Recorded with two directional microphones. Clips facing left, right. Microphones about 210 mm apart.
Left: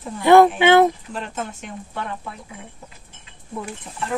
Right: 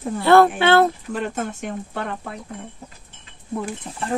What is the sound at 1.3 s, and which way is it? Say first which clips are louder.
Speech: right 4 dB; 50° right (ahead or behind).